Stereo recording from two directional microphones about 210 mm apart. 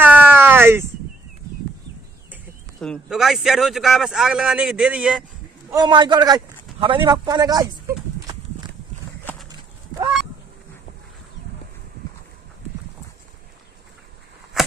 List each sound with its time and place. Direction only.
0.0 s a sound: 10° right (ahead or behind)
2.8 s speech: centre (ahead or behind)
5.7 s a man's voice: 20° right (ahead or behind)